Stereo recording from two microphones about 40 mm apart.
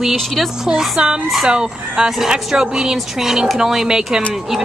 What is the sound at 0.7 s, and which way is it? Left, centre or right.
A woman's voice, centre.